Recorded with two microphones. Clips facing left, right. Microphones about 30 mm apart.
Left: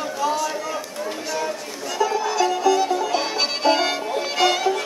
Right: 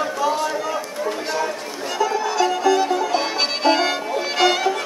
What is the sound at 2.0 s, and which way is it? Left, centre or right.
Music, centre.